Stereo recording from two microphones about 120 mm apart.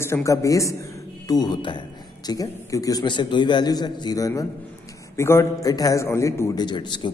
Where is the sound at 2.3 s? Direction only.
30° left (ahead or behind).